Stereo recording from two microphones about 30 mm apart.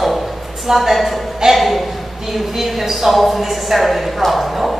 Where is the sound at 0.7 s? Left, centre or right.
Centre.